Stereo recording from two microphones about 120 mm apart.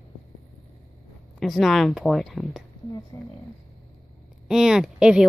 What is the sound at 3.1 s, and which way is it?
Speech, 20° left (ahead or behind).